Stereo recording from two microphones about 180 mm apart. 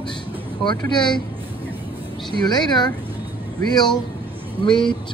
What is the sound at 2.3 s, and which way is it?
Speech, 25° left (ahead or behind).